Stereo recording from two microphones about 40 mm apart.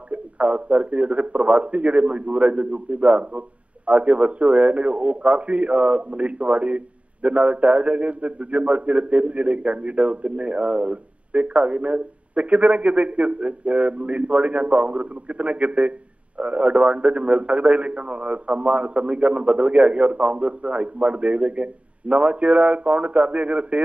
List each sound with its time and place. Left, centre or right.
0.1 s a man's voice: right